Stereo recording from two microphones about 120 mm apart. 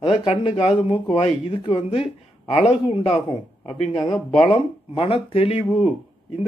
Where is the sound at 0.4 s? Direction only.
45° left (ahead or behind).